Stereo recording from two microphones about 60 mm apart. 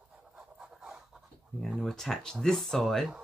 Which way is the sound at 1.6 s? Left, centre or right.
Centre.